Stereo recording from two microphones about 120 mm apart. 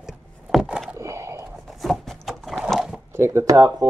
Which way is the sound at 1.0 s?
25° right (ahead or behind).